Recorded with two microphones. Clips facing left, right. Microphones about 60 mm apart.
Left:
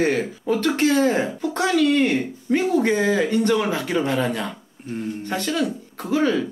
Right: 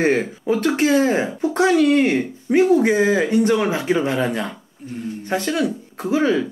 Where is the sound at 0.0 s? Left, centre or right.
Right.